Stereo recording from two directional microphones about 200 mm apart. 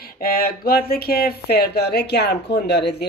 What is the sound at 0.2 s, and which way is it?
Speech, 50° left (ahead or behind).